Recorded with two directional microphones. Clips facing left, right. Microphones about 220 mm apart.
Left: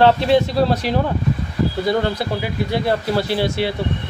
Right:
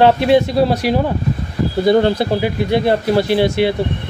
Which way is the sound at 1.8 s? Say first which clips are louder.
Right 11 dB; 25° right (ahead or behind).